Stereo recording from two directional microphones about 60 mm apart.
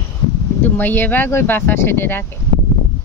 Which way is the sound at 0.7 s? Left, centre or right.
Left.